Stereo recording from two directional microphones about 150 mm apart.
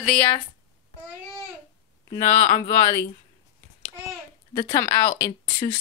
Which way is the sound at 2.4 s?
45° left (ahead or behind).